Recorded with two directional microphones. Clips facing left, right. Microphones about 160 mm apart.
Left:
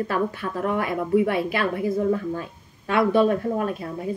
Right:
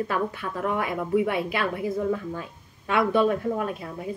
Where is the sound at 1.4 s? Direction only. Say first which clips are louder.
Left 3 dB; 35° left (ahead or behind).